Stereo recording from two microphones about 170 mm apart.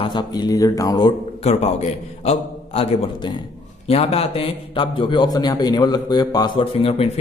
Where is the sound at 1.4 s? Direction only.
40° left (ahead or behind).